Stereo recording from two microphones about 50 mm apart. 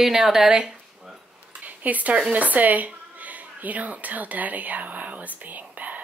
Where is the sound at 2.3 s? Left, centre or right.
Right.